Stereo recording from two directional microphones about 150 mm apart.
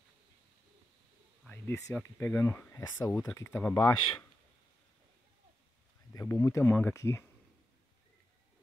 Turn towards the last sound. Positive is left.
turn(degrees=20)  # may be behind; listen again after turning